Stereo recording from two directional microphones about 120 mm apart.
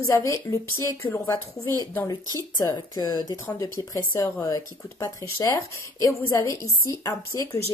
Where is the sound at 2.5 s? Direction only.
35° left (ahead or behind).